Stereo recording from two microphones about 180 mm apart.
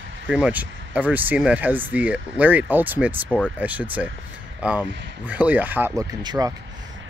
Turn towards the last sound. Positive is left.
turn(degrees=-20)  # may be behind; listen again after turning